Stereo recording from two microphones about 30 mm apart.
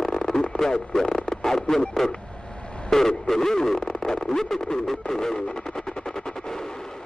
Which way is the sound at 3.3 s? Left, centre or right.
Centre.